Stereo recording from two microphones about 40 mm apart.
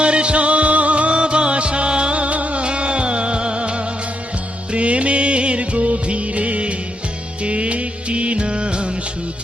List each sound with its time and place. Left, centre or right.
0.0 s music: right
4.7 s music of bollywood: right
7.4 s music: right